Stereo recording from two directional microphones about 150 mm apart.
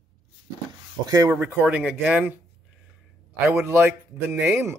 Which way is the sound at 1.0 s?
25° right (ahead or behind).